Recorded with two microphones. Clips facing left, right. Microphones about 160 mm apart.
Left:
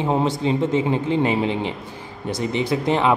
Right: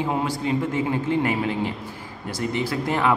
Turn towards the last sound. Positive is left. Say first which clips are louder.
# left 3 dB
turn(degrees=20)  # may be behind; listen again after turning